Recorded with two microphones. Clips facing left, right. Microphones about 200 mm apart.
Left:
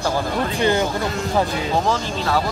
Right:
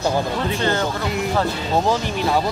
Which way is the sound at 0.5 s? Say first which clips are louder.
Left 3 dB; 15° left (ahead or behind).